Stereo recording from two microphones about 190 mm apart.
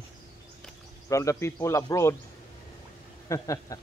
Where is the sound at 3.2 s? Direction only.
15° left (ahead or behind).